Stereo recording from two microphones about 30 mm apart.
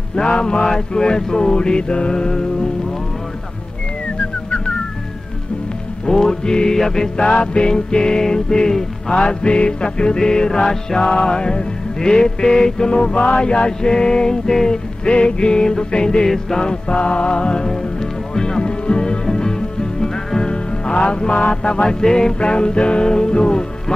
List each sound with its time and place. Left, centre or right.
0.1 s music: left
6.0 s music: left
9.1 s music: left
11.0 s music: left
12.9 s music: left; by 14.8 s centre
15.0 s music: left
16.9 s music: left
18.3 s music: centre
18.6 s music: left
22.0 s music: left
22.4 s music: left